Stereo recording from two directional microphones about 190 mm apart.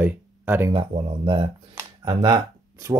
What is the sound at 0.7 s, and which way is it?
Speech, 25° right (ahead or behind).